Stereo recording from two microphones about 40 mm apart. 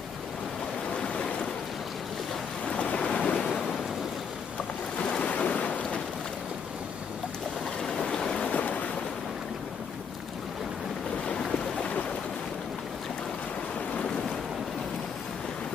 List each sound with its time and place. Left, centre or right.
1.0 s waves: left
2.7 s waves: left
5.2 s waves: left
7.8 s a sound: centre
8.5 s boat: left